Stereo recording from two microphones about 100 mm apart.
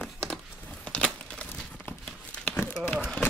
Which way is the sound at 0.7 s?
10° left (ahead or behind).